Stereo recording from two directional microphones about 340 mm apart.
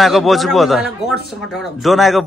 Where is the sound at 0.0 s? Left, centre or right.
Centre.